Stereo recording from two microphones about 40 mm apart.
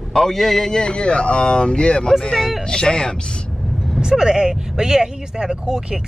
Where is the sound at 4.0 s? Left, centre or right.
Centre.